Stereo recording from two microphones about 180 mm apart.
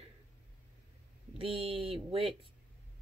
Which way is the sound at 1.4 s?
30° right (ahead or behind).